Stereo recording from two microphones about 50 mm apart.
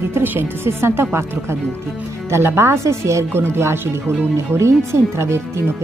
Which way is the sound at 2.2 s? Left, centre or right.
Right.